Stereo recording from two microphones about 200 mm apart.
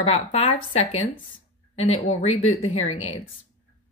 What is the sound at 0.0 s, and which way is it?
Speech, 30° left (ahead or behind).